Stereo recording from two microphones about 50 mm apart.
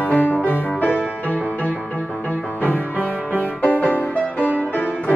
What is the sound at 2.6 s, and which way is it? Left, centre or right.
Music, left.